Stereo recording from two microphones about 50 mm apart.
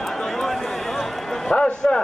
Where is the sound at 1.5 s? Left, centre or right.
Centre.